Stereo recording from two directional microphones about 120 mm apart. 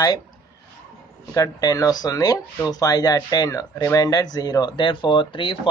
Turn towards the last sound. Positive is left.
turn(degrees=45)  # may be behind; listen again after turning